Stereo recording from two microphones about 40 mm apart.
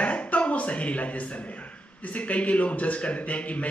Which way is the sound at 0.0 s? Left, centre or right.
Left.